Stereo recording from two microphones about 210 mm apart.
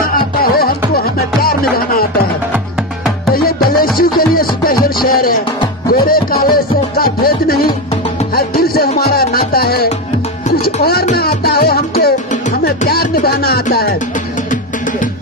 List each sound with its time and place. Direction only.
0.1 s music: 45° left (ahead or behind)
3.9 s music: 45° left (ahead or behind)